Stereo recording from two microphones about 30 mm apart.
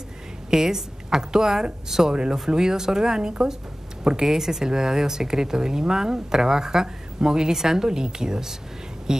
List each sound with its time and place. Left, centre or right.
0.5 s a woman's voice: centre
4.3 s speech: centre